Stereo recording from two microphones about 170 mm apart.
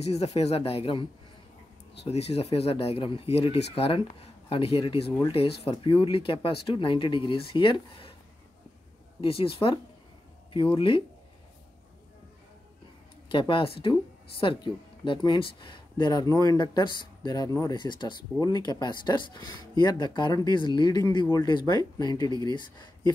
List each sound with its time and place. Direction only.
0.0 s speech: 40° left (ahead or behind)
2.0 s speech: 35° left (ahead or behind)
9.2 s speech: 35° left (ahead or behind)
13.3 s speech: 30° left (ahead or behind)